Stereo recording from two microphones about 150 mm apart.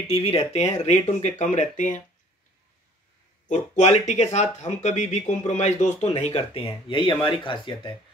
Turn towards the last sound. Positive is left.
turn(degrees=30)  # may be behind; listen again after turning